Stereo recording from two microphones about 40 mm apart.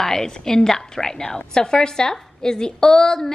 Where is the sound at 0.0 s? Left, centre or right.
Centre.